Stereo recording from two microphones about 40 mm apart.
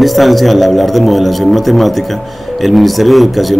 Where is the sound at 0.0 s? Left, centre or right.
Centre.